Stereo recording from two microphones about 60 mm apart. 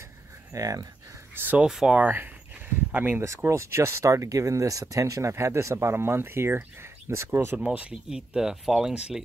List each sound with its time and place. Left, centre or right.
0.6 s speech: right
1.3 s speech: right
1.6 s speech: centre
2.0 s speech: right
3.4 s speech: right
7.5 s speech: right
8.4 s speech: centre